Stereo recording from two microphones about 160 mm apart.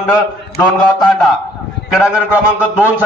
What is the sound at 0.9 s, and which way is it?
Speech, 5° left (ahead or behind).